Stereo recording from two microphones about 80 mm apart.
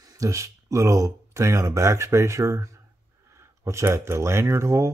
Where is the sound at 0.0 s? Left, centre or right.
Right.